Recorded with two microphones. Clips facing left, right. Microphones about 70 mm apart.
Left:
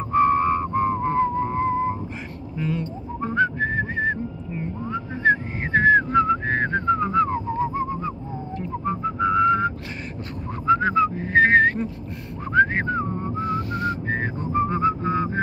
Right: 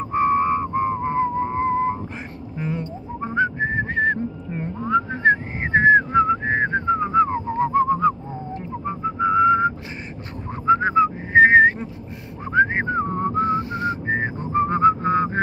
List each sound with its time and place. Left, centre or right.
0.1 s whistling: centre
2.5 s a sound: right
3.2 s whistling: centre
3.9 s whistling: right
5.2 s whistling: right
7.7 s whistling: right
8.8 s whistling: centre
10.7 s whistling: right
13.1 s whistling: right
13.5 s whistling: right
14.5 s whistling: right